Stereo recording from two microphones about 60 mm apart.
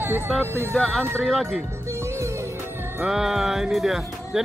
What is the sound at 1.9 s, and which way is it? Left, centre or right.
Music, right.